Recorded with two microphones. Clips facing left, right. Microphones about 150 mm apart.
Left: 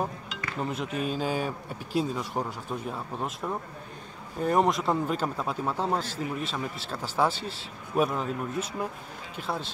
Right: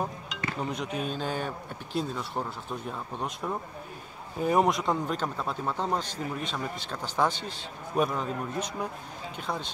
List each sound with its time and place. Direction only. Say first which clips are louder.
0.6 s speech: left 2 dB; 5° left (ahead or behind)